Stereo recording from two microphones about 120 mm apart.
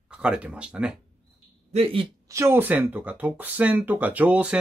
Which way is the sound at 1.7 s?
55° right (ahead or behind).